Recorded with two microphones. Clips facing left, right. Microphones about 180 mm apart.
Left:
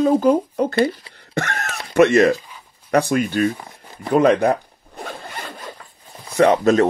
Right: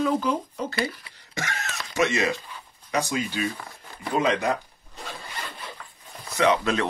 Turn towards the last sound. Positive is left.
turn(degrees=45)  # may be behind; listen again after turning